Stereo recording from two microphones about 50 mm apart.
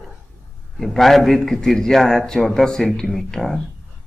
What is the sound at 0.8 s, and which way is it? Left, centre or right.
Speech, centre.